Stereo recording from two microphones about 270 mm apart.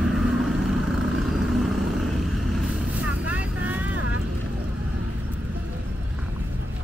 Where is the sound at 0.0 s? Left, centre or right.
Centre.